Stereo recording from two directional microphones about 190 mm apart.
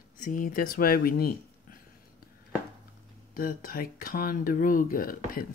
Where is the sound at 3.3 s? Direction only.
50° left (ahead or behind).